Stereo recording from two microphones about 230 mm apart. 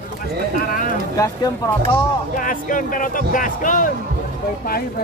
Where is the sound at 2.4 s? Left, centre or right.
Left.